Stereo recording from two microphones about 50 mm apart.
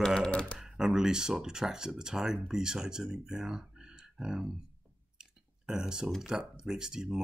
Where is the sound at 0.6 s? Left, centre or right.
Centre.